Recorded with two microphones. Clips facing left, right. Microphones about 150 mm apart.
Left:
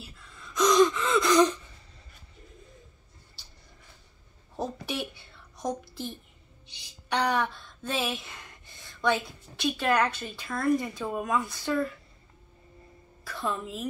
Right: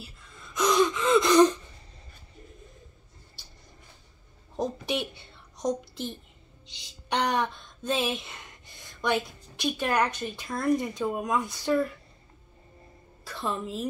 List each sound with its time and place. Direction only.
0.6 s gasp: 10° right (ahead or behind)
1.1 s gasp: 25° right (ahead or behind)
4.6 s a sound: 20° right (ahead or behind)
7.2 s a sound: 20° right (ahead or behind)
9.6 s speech: 15° right (ahead or behind)
13.3 s a woman's voice: 25° right (ahead or behind)